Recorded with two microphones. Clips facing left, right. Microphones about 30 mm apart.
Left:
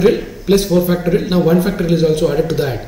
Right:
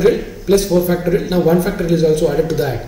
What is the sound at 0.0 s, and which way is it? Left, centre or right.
A man's voice, centre.